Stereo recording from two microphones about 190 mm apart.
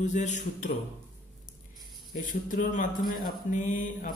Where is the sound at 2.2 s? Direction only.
45° left (ahead or behind).